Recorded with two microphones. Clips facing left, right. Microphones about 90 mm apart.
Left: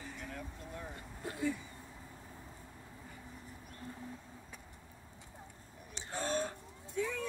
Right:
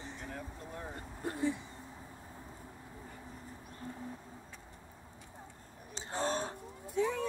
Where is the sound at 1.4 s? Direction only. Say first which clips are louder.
Right 2 dB; 30° right (ahead or behind).